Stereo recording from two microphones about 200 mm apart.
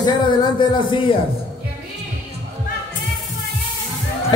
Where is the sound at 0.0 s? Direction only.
25° left (ahead or behind).